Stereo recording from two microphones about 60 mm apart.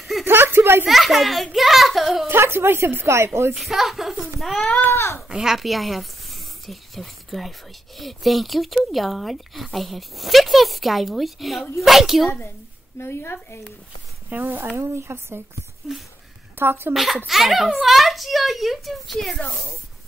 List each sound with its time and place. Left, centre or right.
0.2 s a sound: right
0.8 s speech: centre
2.2 s a woman's voice: right
3.5 s speech: centre
4.9 s a child's voice: left
5.3 s speech: centre
13.0 s a woman's voice: left
14.4 s a woman's voice: right
15.9 s a sound: centre
16.5 s speech: right
16.9 s speech: centre